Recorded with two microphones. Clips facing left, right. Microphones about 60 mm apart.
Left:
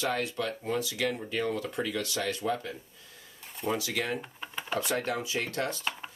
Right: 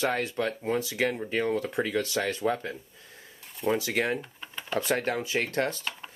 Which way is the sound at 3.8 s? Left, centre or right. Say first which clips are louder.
Right 4 dB; right.